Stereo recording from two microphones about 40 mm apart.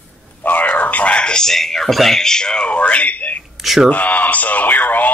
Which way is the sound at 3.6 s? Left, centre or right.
Centre.